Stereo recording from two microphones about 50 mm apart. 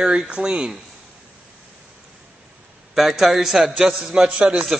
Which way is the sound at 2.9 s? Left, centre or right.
Centre.